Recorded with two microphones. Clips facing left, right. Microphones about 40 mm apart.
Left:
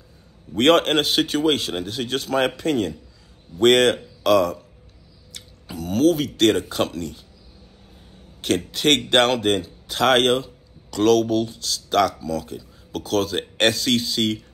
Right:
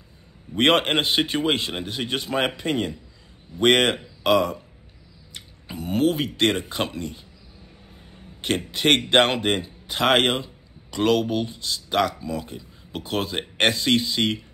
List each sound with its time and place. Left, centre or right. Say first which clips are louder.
0.6 s a man's voice: left 3 dB; centre
8.4 s speech: left 2 dB; right